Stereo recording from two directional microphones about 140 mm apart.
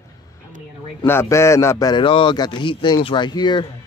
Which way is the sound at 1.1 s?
20° left (ahead or behind).